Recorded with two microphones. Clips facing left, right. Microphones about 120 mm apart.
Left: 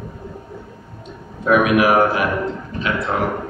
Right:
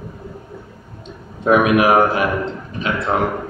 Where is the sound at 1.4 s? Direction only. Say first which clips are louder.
Right 1 dB; 25° right (ahead or behind).